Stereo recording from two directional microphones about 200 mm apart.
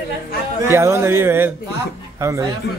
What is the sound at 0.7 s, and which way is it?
A man's voice, 15° right (ahead or behind).